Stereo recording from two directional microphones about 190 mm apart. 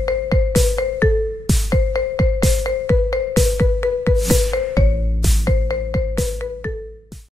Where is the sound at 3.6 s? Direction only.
15° left (ahead or behind).